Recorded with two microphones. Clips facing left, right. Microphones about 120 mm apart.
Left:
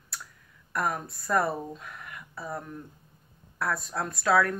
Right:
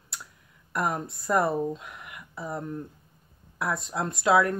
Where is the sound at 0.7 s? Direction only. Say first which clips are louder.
Right 1 dB; 20° right (ahead or behind).